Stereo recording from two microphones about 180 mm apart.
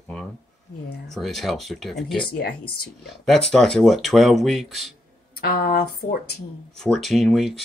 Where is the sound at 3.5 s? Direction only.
Centre (ahead or behind).